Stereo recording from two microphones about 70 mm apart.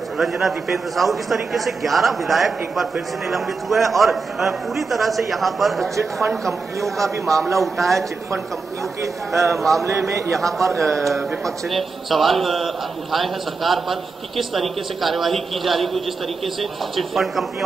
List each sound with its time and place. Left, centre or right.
0.2 s a man's voice: centre
9.5 s a man's voice: centre
9.8 s a man's voice: right
10.3 s a man's voice: centre